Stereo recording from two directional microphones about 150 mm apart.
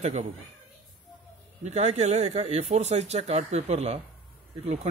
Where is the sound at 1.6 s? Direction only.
50° right (ahead or behind).